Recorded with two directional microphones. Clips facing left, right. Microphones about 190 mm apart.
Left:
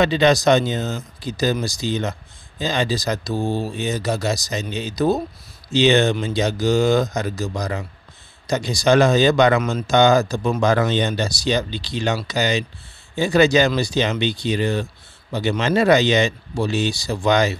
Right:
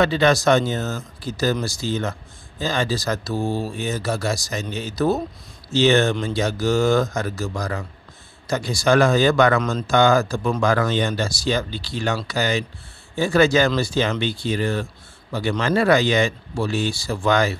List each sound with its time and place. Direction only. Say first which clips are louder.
0.0 s speech: left 1 dB; 20° left (ahead or behind)